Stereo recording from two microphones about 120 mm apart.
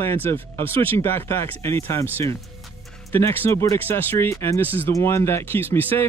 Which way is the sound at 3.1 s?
20° left (ahead or behind).